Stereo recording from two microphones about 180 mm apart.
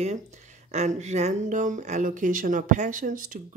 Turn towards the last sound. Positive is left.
turn(degrees=-50)  # may be behind; listen again after turning